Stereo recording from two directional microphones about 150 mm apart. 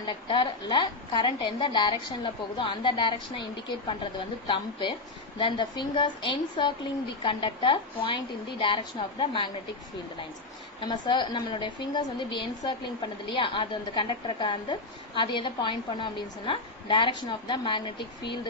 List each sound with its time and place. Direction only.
0.0 s a woman's voice: 30° left (ahead or behind)
10.8 s a woman's voice: 30° left (ahead or behind)